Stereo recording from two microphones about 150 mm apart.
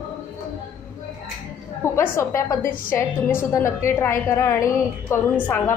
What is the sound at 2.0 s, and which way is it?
A woman's voice, 20° left (ahead or behind).